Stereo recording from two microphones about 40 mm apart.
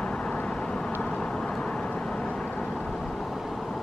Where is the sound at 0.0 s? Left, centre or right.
Left.